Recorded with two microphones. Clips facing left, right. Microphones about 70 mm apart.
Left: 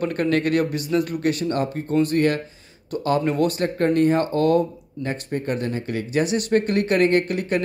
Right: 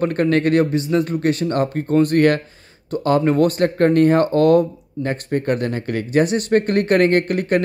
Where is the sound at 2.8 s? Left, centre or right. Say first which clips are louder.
Right 5 dB; right.